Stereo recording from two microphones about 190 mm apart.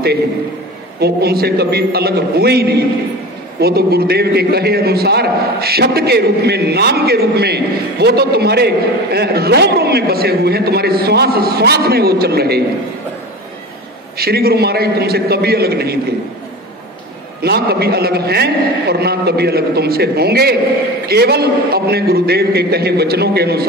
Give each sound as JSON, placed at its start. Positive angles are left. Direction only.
{"t": 0.9, "sound": "a man's voice", "side_deg": -55}
{"t": 14.1, "sound": "a man's voice", "side_deg": -55}
{"t": 17.4, "sound": "a man's voice", "side_deg": -55}